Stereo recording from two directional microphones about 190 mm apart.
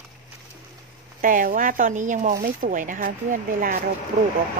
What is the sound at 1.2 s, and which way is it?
Speech, 45° right (ahead or behind).